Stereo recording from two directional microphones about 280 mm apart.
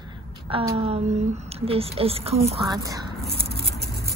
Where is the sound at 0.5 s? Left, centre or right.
Centre.